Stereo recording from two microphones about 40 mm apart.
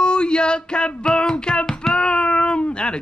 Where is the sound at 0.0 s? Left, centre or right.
Left.